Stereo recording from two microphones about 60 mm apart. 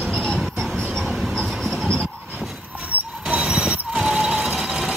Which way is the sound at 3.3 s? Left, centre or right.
Centre.